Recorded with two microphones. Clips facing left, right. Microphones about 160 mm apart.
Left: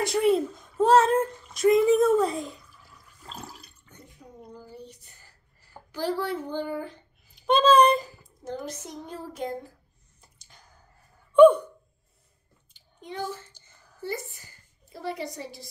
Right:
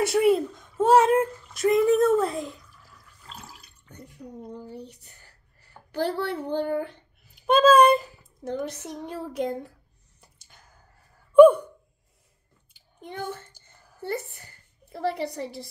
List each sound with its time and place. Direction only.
0.0 s speech: 5° right (ahead or behind)
3.3 s water: 40° left (ahead or behind)
4.6 s child singing: 70° right (ahead or behind)
5.9 s a woman's voice: 60° right (ahead or behind)
7.4 s speech: 5° right (ahead or behind)
8.6 s child singing: 65° right (ahead or behind)
10.4 s a sound: 5° right (ahead or behind)
11.3 s gasp: 5° right (ahead or behind)
13.0 s a woman's voice: 55° right (ahead or behind)